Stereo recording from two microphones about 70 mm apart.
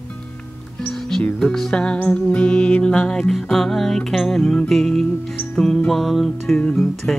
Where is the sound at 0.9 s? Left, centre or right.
Centre.